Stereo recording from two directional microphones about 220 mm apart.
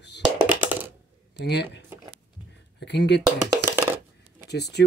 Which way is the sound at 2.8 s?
50° left (ahead or behind).